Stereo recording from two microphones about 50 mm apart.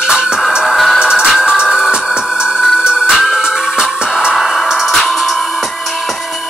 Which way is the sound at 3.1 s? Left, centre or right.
Centre.